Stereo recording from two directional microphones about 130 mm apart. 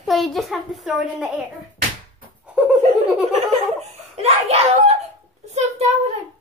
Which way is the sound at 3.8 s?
55° right (ahead or behind).